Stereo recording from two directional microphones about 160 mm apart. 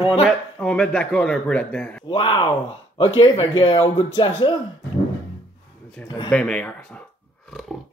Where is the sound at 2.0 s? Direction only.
30° left (ahead or behind).